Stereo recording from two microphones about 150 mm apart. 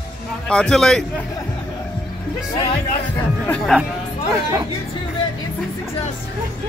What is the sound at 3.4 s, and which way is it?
Speech, 5° left (ahead or behind).